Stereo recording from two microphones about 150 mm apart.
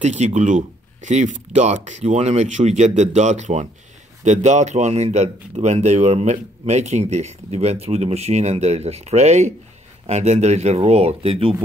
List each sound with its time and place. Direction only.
0.0 s speech: 50° right (ahead or behind)